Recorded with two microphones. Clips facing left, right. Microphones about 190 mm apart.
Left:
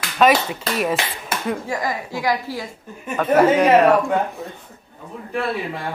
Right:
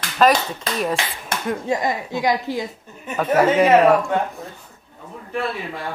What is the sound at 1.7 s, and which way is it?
Speech, 25° right (ahead or behind).